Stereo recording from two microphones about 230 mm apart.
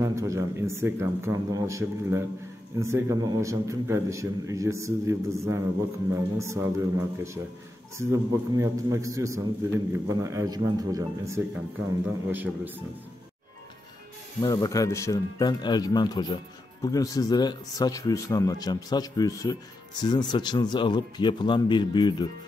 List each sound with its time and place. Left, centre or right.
0.0 s a man's voice: centre
14.4 s speech: centre